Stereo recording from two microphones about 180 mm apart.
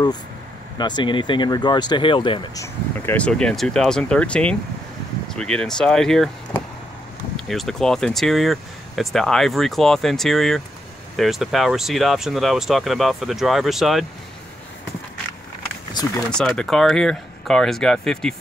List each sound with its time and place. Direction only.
0.7 s speech: 25° left (ahead or behind)
2.6 s speech: 10° left (ahead or behind)
7.3 s speech: centre (ahead or behind)
15.9 s speech: 25° left (ahead or behind)
16.3 s speech: 5° left (ahead or behind)